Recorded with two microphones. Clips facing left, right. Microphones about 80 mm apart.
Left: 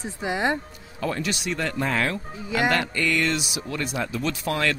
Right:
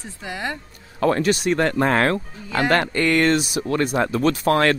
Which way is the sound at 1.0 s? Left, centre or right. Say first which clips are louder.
Right 9 dB; right.